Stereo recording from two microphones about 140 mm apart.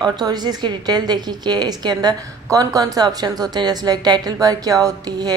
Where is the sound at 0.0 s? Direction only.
30° right (ahead or behind).